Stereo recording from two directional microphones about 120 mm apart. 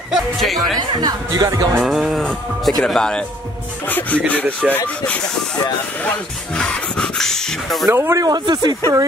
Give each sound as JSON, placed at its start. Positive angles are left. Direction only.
{"t": 0.1, "sound": "speech", "side_deg": 0}
{"t": 0.7, "sound": "speech", "side_deg": -35}
{"t": 1.8, "sound": "speech", "side_deg": 0}
{"t": 7.9, "sound": "speech", "side_deg": -20}